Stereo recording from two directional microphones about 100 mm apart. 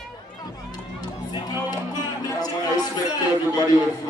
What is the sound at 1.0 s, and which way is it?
Run, 45° left (ahead or behind).